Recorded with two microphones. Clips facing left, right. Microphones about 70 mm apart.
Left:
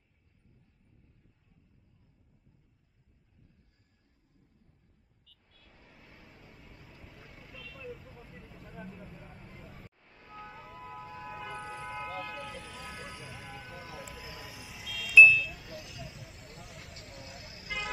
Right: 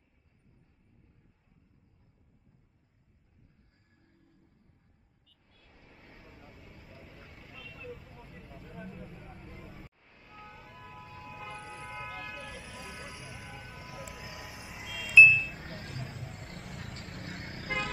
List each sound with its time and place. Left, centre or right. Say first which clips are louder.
5.3 s vehicle: even; centre
13.9 s a sound: right 1 dB; centre; by 16.2 s right
16.3 s vehicle: right 4 dB; right